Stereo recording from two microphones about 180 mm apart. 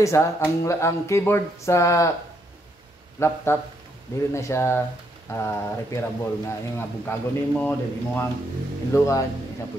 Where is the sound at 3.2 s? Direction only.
15° left (ahead or behind).